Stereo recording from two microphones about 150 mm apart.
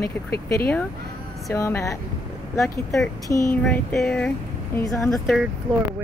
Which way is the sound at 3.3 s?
20° left (ahead or behind).